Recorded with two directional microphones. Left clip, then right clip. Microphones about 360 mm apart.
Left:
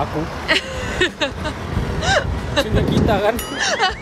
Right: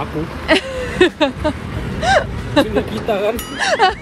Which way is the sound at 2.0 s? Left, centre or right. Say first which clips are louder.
Right 4 dB; centre.